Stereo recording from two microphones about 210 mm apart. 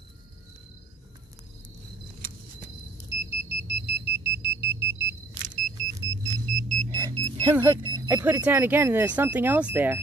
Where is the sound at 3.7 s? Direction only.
55° right (ahead or behind).